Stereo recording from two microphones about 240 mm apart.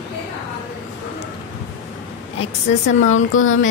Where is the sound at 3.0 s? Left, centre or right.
Left.